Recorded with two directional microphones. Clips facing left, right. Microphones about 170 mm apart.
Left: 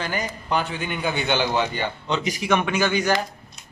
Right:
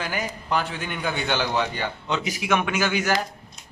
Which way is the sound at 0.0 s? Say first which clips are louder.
Left 1 dB; 5° right (ahead or behind).